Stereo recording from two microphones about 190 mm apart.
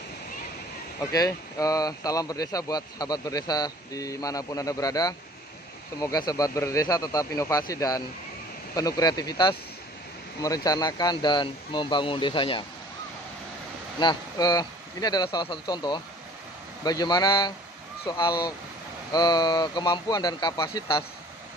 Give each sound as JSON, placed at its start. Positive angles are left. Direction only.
{"t": 1.1, "sound": "speech", "side_deg": 20}
{"t": 13.9, "sound": "speech", "side_deg": 20}